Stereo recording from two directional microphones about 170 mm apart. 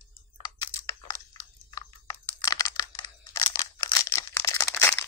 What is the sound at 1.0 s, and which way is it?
Crunch, 20° left (ahead or behind).